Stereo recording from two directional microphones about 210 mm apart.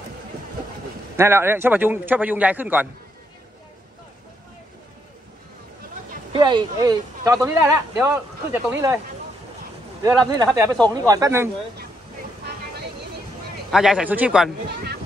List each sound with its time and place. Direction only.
1.1 s a man's voice: 10° right (ahead or behind)
6.3 s a man's voice: 20° right (ahead or behind)
10.2 s a man's voice: 15° right (ahead or behind)
13.7 s a man's voice: centre (ahead or behind)